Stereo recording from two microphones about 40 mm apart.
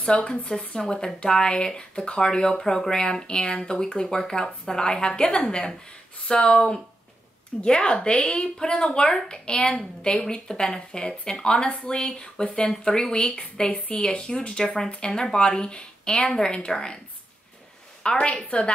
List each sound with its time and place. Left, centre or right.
0.4 s a woman's voice: left
13.9 s a woman's voice: left
18.0 s a woman's voice: left